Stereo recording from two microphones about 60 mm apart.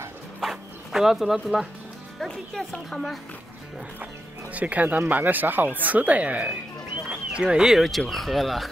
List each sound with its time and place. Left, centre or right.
0.4 s zipper: centre
2.1 s speech: centre
4.0 s speech: right; by 8.6 s centre